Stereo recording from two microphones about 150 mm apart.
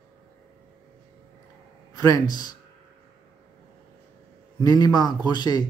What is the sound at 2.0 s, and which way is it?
Speech, 25° left (ahead or behind).